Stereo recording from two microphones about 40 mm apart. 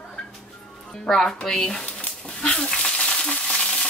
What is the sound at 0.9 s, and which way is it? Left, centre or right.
Speech, centre.